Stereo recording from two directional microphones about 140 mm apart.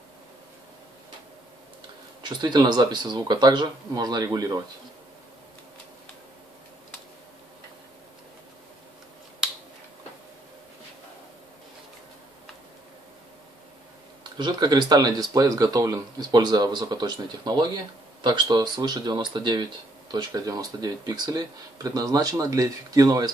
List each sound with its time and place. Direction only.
2.2 s speech: 30° right (ahead or behind)
14.3 s speech: 30° right (ahead or behind)